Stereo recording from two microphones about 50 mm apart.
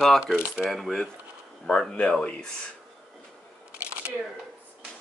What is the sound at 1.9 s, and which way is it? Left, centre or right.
Speech, left.